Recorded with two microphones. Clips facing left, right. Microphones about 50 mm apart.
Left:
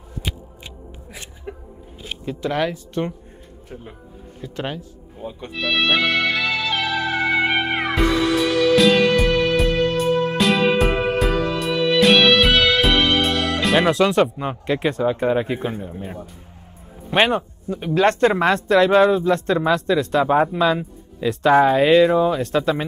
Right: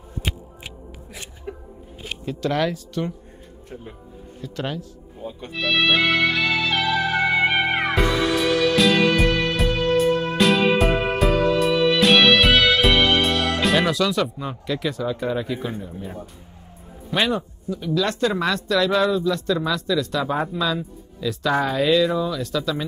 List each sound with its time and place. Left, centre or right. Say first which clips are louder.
1.5 s a sound: even; centre
2.2 s speech: even; centre
2.9 s speech: left 2 dB; left
3.7 s speech: left 1 dB; centre
4.4 s speech: left 1 dB; left
5.5 s music: even; centre
13.8 s speech: left 5 dB; left
17.1 s speech: left 4 dB; left